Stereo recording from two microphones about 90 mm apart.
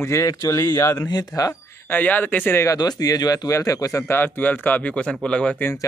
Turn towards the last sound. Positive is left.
turn(degrees=15)  # may be behind; listen again after turning